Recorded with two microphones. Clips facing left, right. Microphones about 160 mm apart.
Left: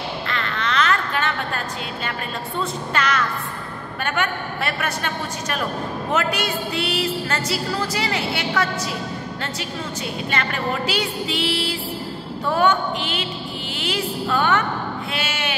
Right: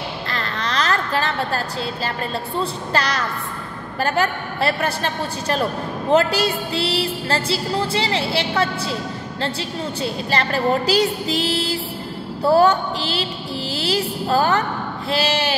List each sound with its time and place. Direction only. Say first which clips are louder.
0.3 s a sound: even; 35° right (ahead or behind)
2.0 s music: right 3 dB; 35° right (ahead or behind)
6.1 s a woman's voice: right 6 dB; 30° right (ahead or behind)
10.0 s music: right 3 dB; 35° right (ahead or behind)